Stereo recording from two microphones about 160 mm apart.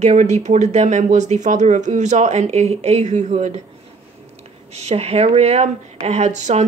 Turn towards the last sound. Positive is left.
turn(degrees=-45)  # may be behind; listen again after turning